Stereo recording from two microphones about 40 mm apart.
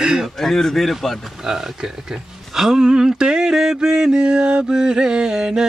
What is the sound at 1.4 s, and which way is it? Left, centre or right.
Speech, centre.